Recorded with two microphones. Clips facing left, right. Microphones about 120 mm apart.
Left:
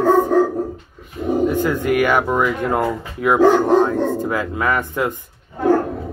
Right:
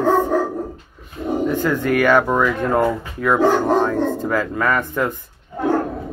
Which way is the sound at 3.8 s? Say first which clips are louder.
Left 1 dB; 15° left (ahead or behind).